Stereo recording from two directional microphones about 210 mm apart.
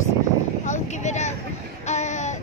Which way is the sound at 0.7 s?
35° left (ahead or behind).